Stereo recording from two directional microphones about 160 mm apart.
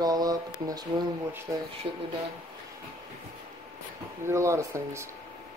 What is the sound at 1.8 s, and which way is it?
Speech, 40° right (ahead or behind).